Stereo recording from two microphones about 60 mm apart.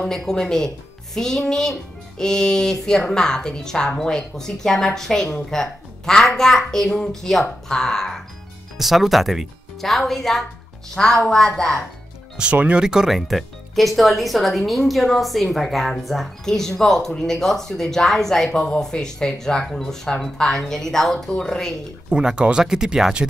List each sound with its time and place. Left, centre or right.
0.0 s a child's voice: centre
8.7 s a child's voice: centre
12.5 s speech: right
12.8 s speech: centre
22.1 s speech: centre